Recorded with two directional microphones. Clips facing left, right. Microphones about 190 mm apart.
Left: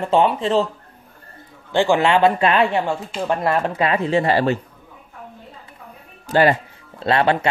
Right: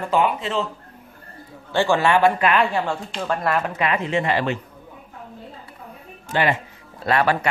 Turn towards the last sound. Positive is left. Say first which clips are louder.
# left 2 dB
turn(degrees=25)  # may be behind; listen again after turning